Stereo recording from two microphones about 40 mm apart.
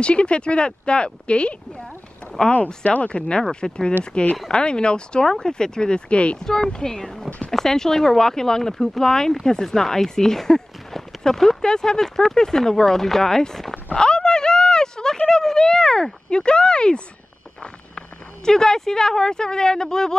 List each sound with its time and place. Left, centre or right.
0.0 s speech: left
3.2 s speech: left
6.3 s speech: centre
7.2 s speech: left
7.5 s speech: centre
11.6 s speech: centre
13.9 s a sound: left
16.3 s speech: left